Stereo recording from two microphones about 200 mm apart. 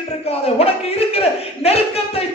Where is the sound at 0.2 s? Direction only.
30° left (ahead or behind).